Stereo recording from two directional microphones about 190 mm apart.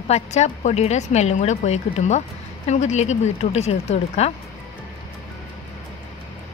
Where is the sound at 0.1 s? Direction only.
35° left (ahead or behind).